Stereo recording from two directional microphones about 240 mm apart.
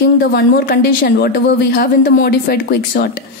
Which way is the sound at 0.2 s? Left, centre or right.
Left.